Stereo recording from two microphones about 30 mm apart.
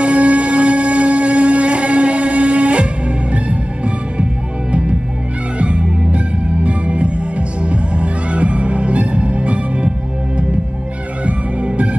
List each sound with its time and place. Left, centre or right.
0.0 s music: right
5.6 s music: right
11.2 s music: right